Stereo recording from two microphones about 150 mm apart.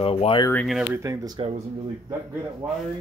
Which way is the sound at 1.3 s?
45° right (ahead or behind).